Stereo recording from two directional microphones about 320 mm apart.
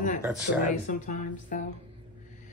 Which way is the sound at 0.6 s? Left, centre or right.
Left.